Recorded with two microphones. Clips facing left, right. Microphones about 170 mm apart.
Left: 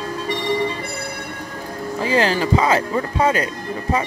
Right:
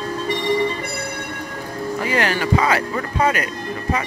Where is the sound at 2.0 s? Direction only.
30° left (ahead or behind).